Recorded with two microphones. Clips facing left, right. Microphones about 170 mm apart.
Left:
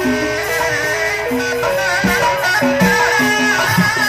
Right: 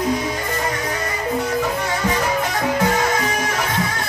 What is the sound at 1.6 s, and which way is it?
Music, 80° left.